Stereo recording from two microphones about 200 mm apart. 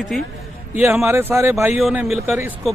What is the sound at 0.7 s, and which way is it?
A man's voice, 10° right (ahead or behind).